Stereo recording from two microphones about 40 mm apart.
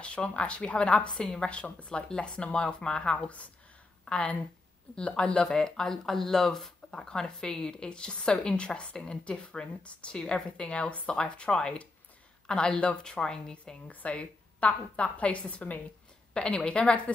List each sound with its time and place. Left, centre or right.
0.0 s a woman's voice: left
4.0 s a sound: left
4.9 s a woman's voice: left
5.5 s a woman's voice: centre
13.8 s a woman's voice: left
16.3 s a woman's voice: left